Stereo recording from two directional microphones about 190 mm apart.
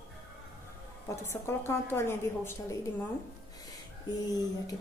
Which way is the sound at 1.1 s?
15° left (ahead or behind).